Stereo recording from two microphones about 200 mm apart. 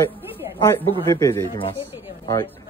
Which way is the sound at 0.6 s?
15° left (ahead or behind).